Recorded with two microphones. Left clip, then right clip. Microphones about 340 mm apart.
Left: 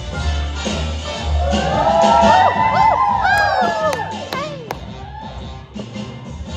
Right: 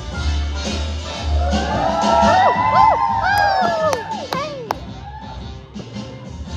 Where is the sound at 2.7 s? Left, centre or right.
Right.